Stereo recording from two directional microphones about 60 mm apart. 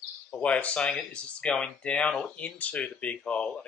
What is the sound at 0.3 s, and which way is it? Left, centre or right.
Speech, left.